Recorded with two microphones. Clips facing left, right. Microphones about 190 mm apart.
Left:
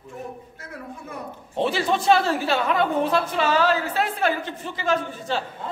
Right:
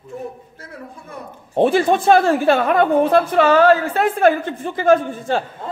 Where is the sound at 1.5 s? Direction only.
50° right (ahead or behind).